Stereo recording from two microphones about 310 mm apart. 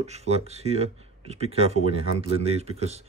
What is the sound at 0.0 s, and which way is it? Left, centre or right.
Speech, right.